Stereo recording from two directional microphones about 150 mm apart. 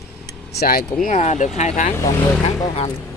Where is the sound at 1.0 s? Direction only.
50° left (ahead or behind).